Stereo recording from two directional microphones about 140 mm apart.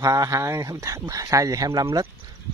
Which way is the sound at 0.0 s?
25° right (ahead or behind).